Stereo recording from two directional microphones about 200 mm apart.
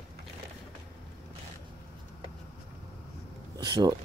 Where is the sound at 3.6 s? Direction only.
20° right (ahead or behind).